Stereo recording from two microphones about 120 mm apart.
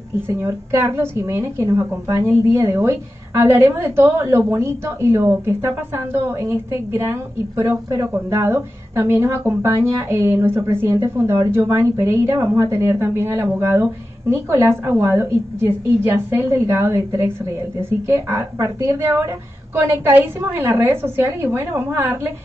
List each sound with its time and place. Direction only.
0.3 s a woman's voice: 20° right (ahead or behind)